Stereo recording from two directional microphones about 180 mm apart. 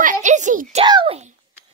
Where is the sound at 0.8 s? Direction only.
25° right (ahead or behind).